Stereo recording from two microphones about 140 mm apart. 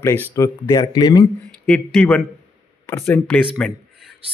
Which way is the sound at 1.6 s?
5° left (ahead or behind).